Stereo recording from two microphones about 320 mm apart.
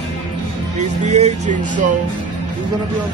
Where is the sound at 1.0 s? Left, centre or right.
Right.